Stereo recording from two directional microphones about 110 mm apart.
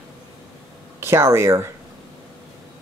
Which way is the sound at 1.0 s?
25° right (ahead or behind).